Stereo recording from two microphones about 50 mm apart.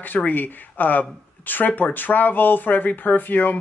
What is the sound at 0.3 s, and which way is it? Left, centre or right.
Speech, left.